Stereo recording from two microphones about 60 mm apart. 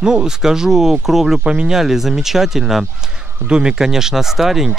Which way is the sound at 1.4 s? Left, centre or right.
Centre.